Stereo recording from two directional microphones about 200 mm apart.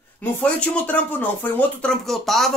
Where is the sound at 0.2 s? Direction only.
10° left (ahead or behind).